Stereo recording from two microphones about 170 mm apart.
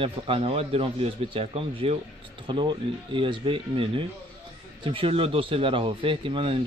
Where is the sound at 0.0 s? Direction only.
35° right (ahead or behind).